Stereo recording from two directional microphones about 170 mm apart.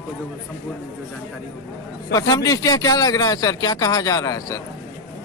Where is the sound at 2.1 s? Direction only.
20° left (ahead or behind).